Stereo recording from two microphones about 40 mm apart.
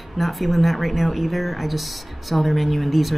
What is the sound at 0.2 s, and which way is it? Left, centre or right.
Speech, centre.